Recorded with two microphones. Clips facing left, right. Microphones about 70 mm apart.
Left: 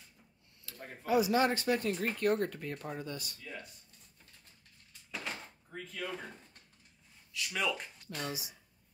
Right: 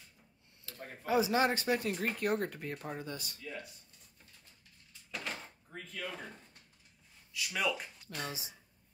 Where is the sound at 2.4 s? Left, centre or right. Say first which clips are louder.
Left 1 dB; centre.